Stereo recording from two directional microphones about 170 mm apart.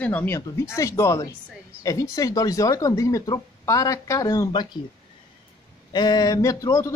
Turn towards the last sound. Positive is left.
turn(degrees=20)  # may be behind; listen again after turning